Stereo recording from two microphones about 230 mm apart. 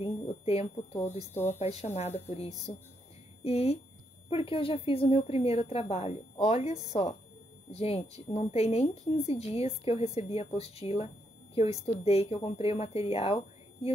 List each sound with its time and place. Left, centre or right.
0.0 s speech: left
1.3 s speech: centre
1.6 s a woman's voice: left